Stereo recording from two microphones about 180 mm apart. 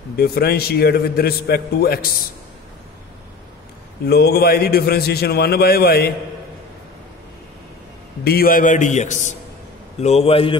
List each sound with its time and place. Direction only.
0.2 s a man's voice: 60° left (ahead or behind)
4.1 s a man's voice: 60° left (ahead or behind)
8.2 s a man's voice: 60° left (ahead or behind); by 10.6 s 30° left (ahead or behind)